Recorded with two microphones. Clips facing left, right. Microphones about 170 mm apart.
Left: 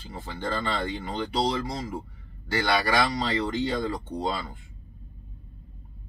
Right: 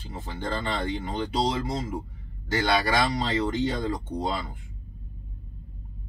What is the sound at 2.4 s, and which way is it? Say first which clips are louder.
A man's voice: right 1 dB; 20° right (ahead or behind).